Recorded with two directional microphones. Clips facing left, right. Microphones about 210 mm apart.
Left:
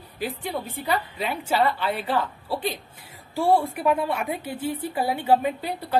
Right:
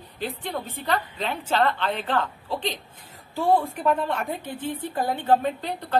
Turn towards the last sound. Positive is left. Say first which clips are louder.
# left 1 dB
turn(degrees=10)  # may be behind; listen again after turning